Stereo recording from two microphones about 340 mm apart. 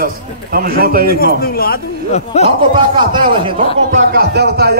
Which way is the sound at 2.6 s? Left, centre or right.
Centre.